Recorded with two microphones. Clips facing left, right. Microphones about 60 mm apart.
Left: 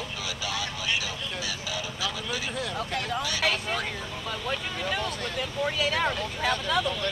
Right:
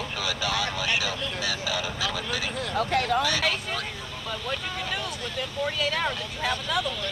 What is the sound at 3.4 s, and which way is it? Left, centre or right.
Speech, centre.